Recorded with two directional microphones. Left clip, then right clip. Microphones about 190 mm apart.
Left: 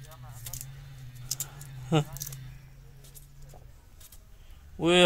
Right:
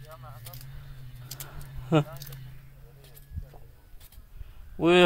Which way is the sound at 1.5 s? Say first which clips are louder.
Right 4 dB; 30° right (ahead or behind).